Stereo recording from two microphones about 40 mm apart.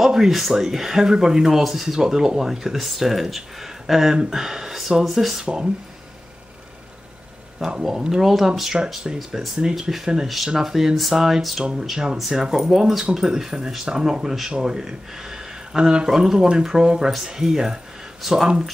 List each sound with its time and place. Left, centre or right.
0.0 s a sound: centre
0.4 s speech: centre
5.4 s speech: right
7.8 s speech: centre
8.7 s speech: right
9.8 s speech: centre
18.2 s speech: centre